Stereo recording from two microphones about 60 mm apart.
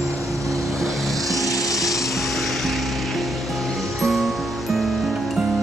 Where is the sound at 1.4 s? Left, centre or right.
Left.